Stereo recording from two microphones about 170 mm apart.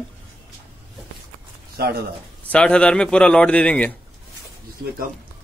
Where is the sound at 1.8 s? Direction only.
65° right (ahead or behind).